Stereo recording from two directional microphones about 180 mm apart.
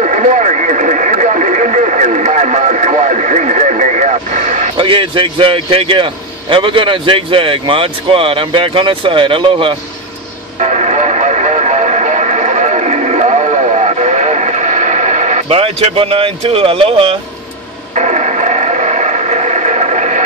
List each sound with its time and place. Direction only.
0.0 s radio: 40° right (ahead or behind)
4.7 s a man's voice: 30° right (ahead or behind)
10.6 s radio: 40° right (ahead or behind)